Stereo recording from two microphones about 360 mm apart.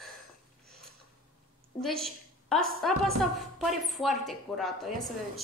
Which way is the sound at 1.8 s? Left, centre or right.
Centre.